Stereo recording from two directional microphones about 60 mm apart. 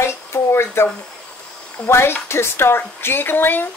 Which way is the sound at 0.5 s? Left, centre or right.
Left.